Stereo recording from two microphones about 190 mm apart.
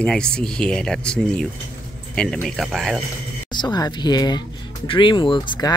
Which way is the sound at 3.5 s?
25° left (ahead or behind).